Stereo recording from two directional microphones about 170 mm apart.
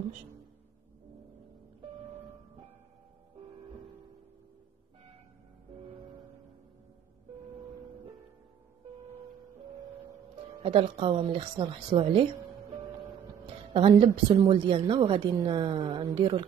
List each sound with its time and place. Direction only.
10.6 s speech: 35° right (ahead or behind)
13.5 s speech: 30° right (ahead or behind)